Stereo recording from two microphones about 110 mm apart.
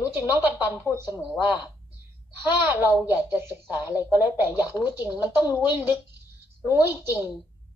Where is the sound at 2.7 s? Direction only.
20° right (ahead or behind).